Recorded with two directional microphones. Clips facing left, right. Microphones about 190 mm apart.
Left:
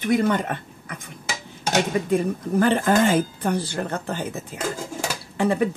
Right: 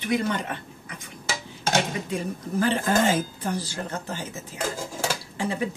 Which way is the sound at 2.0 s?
55° left (ahead or behind).